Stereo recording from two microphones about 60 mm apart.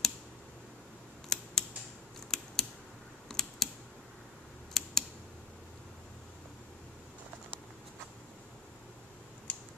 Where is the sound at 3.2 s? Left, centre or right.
Centre.